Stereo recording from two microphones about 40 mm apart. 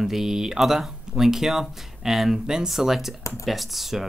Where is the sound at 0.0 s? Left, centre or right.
Centre.